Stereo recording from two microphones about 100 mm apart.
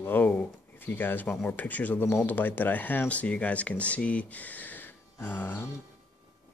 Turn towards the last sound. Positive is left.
turn(degrees=20)  # may be behind; listen again after turning